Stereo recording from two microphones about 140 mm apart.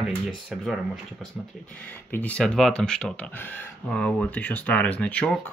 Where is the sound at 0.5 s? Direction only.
5° right (ahead or behind).